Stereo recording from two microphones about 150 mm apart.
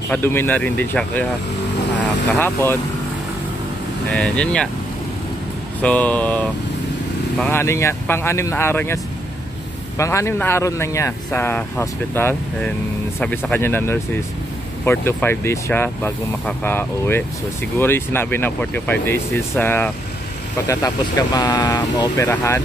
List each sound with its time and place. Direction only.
0.1 s speech: 15° left (ahead or behind)
2.3 s speech: 15° left (ahead or behind)
4.1 s speech: 5° left (ahead or behind)
5.8 s speech: 10° left (ahead or behind); by 22.1 s 30° left (ahead or behind)
22.1 s speech: 15° left (ahead or behind)